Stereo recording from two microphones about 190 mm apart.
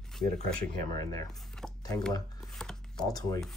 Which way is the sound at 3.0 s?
20° left (ahead or behind).